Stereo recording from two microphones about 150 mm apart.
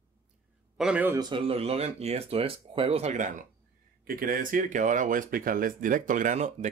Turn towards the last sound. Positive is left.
turn(degrees=-55)  # may be behind; listen again after turning